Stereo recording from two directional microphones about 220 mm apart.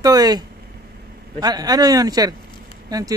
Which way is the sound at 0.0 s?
20° right (ahead or behind).